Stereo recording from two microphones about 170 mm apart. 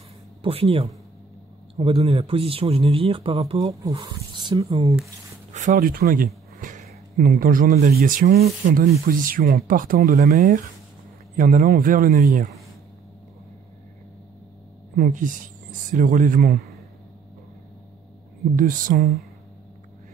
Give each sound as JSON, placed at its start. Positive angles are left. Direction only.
{"t": 0.4, "sound": "speech", "side_deg": -35}
{"t": 5.5, "sound": "a sound", "side_deg": -45}
{"t": 7.2, "sound": "speech", "side_deg": -55}
{"t": 15.0, "sound": "speech", "side_deg": -50}
{"t": 18.6, "sound": "speech", "side_deg": -55}